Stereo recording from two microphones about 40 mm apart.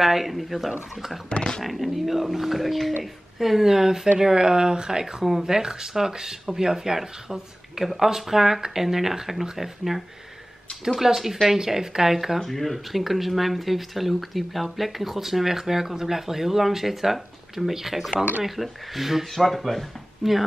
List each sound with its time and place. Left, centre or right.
0.0 s speech: centre
1.3 s speech: left
1.6 s speech: centre
12.4 s speech: centre